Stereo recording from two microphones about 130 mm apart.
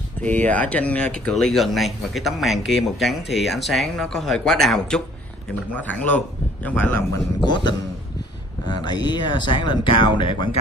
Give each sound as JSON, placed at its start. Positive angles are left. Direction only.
{"t": 0.2, "sound": "speech", "side_deg": 10}
{"t": 7.4, "sound": "speech", "side_deg": 35}